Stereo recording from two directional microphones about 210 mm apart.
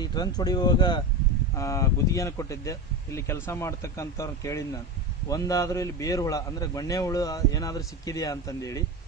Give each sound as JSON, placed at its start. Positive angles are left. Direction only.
{"t": 0.0, "sound": "a man's voice", "side_deg": 20}